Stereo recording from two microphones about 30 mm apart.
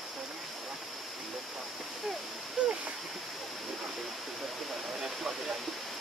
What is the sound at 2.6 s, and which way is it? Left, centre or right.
Splash, right.